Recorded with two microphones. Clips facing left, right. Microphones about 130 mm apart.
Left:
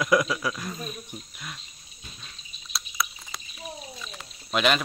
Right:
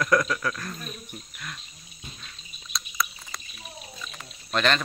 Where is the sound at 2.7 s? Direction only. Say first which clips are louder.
Right 1 dB; 5° left (ahead or behind).